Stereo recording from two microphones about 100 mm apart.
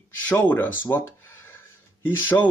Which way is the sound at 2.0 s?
20° left (ahead or behind).